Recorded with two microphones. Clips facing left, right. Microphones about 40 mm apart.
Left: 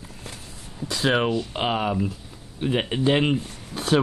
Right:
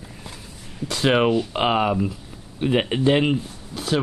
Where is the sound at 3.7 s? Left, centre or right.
Left.